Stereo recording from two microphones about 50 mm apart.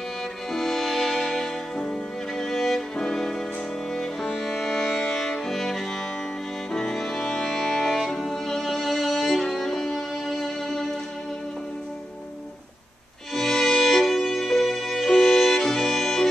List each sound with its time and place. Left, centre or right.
0.5 s music: centre
13.3 s music: centre